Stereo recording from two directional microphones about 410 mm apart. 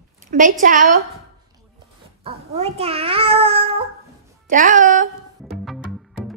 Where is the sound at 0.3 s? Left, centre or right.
Centre.